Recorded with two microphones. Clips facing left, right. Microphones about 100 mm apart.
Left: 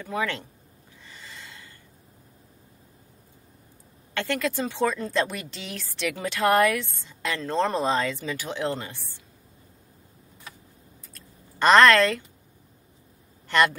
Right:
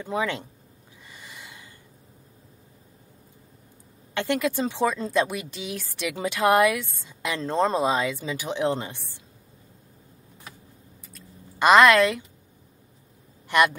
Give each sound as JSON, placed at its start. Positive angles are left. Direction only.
{"t": 0.0, "sound": "speech", "side_deg": -20}
{"t": 1.0, "sound": "snort", "side_deg": -15}
{"t": 4.1, "sound": "speech", "side_deg": -20}
{"t": 11.1, "sound": "a sound", "side_deg": -10}
{"t": 13.5, "sound": "speech", "side_deg": -15}